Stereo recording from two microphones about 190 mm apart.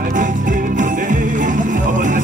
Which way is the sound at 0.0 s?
45° right (ahead or behind).